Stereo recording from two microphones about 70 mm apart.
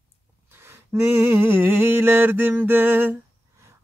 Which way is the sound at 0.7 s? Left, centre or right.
Right.